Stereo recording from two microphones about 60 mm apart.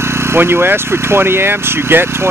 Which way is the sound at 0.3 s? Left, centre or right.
Right.